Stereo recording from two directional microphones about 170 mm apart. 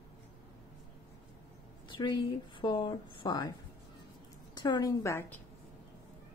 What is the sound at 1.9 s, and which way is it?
Speech, 25° left (ahead or behind).